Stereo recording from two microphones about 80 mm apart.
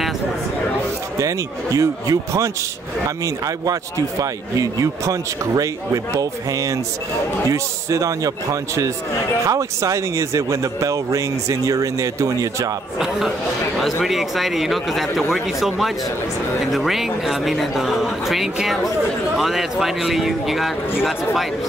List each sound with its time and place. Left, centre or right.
1.2 s speech: right
4.2 s speech: right
7.5 s a man's voice: right
14.0 s a man's voice: centre